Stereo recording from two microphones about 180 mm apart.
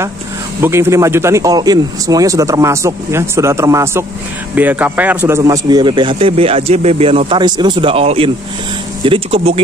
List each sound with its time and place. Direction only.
0.6 s a man's voice: 15° right (ahead or behind); by 9.6 s 30° right (ahead or behind)